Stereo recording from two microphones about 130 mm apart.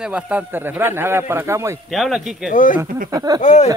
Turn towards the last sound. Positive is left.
turn(degrees=65)  # may be behind; listen again after turning